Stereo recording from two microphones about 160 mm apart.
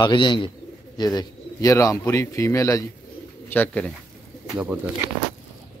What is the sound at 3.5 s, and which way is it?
Speech, 10° left (ahead or behind).